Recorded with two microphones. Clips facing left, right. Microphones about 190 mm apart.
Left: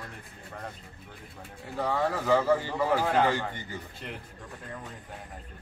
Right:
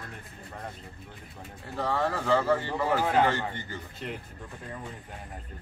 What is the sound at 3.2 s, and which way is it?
Speech, 10° left (ahead or behind).